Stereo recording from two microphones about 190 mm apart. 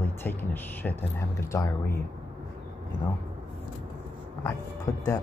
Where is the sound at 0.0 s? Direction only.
10° left (ahead or behind).